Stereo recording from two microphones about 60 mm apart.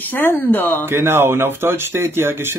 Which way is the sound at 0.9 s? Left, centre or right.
Right.